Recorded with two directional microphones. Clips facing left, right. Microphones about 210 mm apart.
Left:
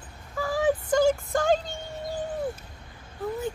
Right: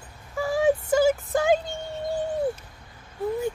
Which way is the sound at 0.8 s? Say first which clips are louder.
Right 1 dB; 5° right (ahead or behind).